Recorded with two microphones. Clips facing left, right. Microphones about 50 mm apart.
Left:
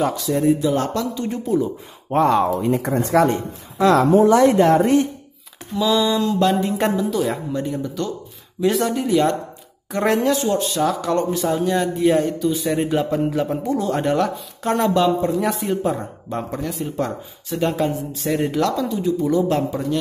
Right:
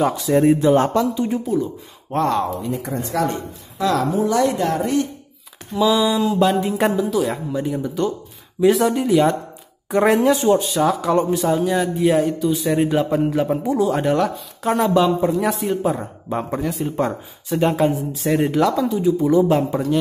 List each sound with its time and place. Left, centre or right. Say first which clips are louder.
0.4 s speech: right 4 dB; right; by 1.4 s centre
2.1 s speech: left 3 dB; centre
2.6 s speech: left 5 dB; left
3.2 s speech: left 5 dB; left
5.7 s speech: right 1 dB; centre
10.6 s speech: right 2 dB; centre
16.9 s speech: right 3 dB; centre
18.1 s speech: right 2 dB; centre